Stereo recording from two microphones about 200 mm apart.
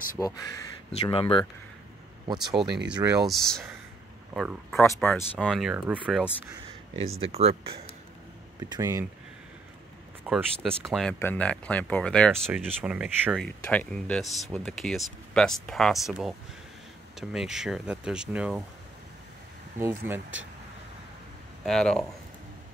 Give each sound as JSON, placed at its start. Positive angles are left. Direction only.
{"t": 0.2, "sound": "speech", "side_deg": 15}
{"t": 2.3, "sound": "speech", "side_deg": 0}
{"t": 2.9, "sound": "speech", "side_deg": -15}
{"t": 3.3, "sound": "speech", "side_deg": 0}
{"t": 7.2, "sound": "speech", "side_deg": -30}
{"t": 8.5, "sound": "speech", "side_deg": -20}
{"t": 10.2, "sound": "speech", "side_deg": 0}
{"t": 19.8, "sound": "speech", "side_deg": -10}
{"t": 21.6, "sound": "speech", "side_deg": 5}